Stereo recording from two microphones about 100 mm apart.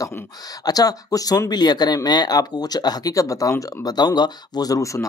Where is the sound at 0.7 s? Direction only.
40° left (ahead or behind).